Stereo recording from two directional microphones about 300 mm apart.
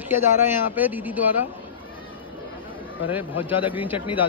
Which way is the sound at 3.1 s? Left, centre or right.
Centre.